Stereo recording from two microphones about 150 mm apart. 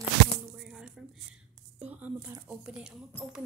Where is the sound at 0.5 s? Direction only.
5° right (ahead or behind).